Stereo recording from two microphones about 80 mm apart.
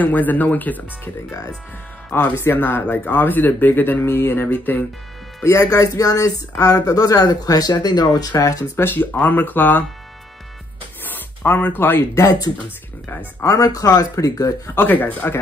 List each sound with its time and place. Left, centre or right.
0.0 s speech: left
5.4 s speech: left
8.7 s speech: left
11.1 s speech: left
12.2 s speech: left
14.7 s speech: left